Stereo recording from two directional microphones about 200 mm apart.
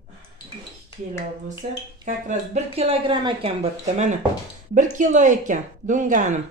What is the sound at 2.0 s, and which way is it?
Speech, 35° right (ahead or behind).